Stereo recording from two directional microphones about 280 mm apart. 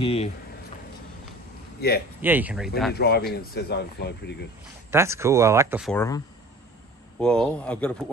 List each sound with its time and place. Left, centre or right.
0.0 s speech: centre
1.8 s speech: left
2.2 s speech: centre
2.9 s speech: left
4.9 s speech: centre
5.9 s speech: centre